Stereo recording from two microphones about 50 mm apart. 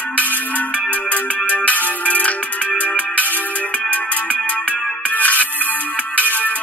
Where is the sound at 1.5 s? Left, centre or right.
Left.